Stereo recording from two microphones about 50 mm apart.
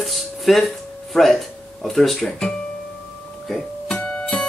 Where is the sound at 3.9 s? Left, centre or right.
Left.